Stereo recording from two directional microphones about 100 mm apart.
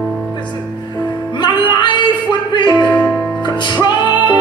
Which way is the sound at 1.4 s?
50° left (ahead or behind).